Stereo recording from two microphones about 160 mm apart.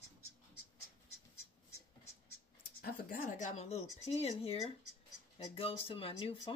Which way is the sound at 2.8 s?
60° left (ahead or behind).